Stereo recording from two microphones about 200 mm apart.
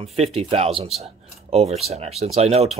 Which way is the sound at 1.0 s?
30° right (ahead or behind).